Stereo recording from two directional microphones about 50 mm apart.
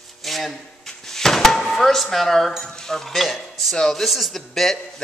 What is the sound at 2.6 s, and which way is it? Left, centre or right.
Speech, centre.